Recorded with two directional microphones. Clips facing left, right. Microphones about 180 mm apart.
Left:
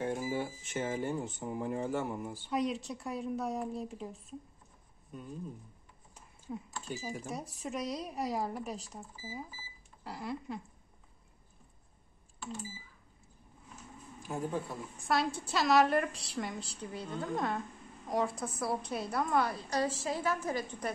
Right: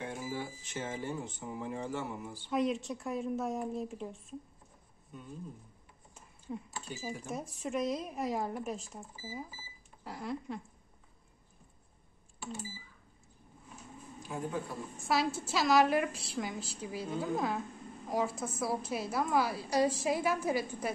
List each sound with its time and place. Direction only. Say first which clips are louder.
0.0 s speech: left 5 dB; 50° left (ahead or behind)
2.5 s a woman's voice: right 2 dB; centre (ahead or behind)
6.5 s a woman's voice: left 1 dB; centre (ahead or behind)
14.3 s speech: left 2 dB; 45° left (ahead or behind)
15.0 s a woman's voice: even; centre (ahead or behind)